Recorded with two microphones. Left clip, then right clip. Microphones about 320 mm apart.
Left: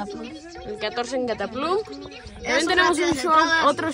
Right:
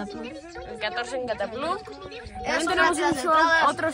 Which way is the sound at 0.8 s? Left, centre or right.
Left.